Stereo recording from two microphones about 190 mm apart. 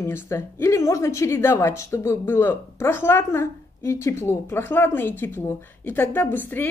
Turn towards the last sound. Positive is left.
turn(degrees=10)  # may be behind; listen again after turning